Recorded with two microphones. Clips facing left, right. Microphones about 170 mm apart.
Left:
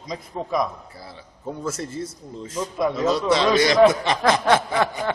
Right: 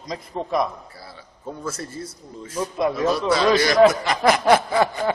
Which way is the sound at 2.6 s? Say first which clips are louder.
Right 1 dB; 5° right (ahead or behind).